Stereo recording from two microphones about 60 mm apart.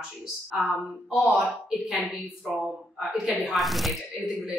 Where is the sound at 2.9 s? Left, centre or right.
Centre.